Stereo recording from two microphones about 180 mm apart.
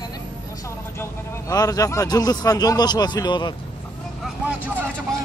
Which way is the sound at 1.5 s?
20° left (ahead or behind).